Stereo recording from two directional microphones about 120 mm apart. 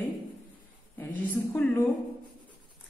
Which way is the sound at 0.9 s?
15° left (ahead or behind).